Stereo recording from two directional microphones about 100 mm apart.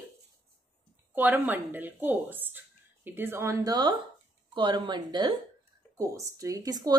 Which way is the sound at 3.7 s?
45° right (ahead or behind).